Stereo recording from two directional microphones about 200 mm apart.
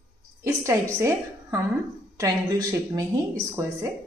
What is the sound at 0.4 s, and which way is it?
A woman's voice, 15° right (ahead or behind).